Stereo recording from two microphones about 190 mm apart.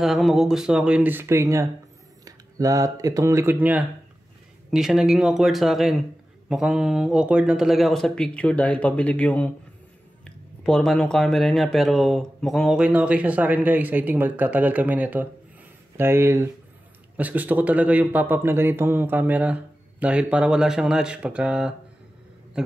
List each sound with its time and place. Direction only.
0.0 s speech: centre (ahead or behind)